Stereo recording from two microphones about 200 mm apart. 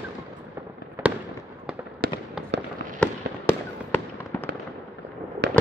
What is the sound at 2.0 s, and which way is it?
Fireworks, 45° right (ahead or behind).